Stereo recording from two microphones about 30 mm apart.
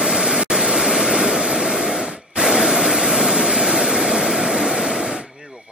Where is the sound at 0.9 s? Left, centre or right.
Centre.